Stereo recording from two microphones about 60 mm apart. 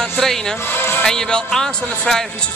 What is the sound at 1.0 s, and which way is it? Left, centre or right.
Speech, centre.